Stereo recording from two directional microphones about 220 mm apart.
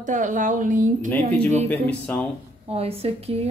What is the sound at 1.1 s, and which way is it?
Speech, 5° left (ahead or behind).